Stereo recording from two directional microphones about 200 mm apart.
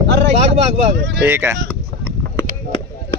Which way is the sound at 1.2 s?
10° right (ahead or behind).